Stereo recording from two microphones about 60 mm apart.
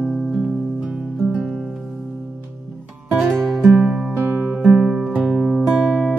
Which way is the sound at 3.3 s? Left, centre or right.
Centre.